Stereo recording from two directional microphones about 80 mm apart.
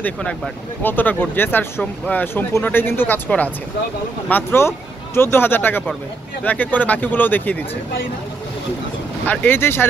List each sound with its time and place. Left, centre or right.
0.0 s speech: centre
0.8 s speech: left
9.2 s speech: left